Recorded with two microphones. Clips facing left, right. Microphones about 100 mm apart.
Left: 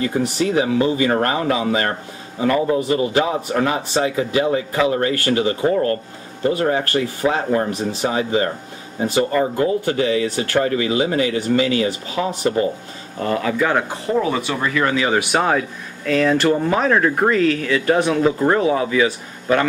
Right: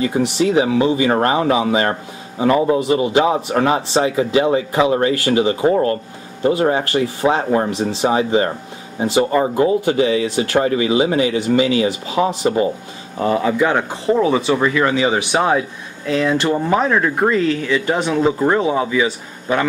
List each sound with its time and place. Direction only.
0.0 s speech: 20° right (ahead or behind)